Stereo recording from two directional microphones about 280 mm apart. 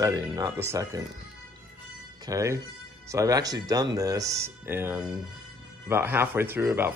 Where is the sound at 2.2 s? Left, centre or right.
Centre.